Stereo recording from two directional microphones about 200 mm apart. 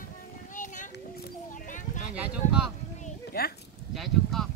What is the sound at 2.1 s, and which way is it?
Speech, 5° right (ahead or behind).